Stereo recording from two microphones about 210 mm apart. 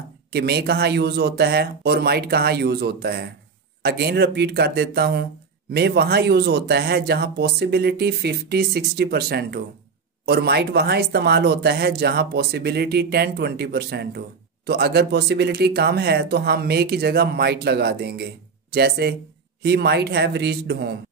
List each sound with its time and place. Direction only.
0.3 s speech: 50° right (ahead or behind)